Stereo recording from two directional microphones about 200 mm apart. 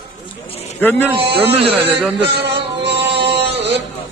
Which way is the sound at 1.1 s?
30° right (ahead or behind).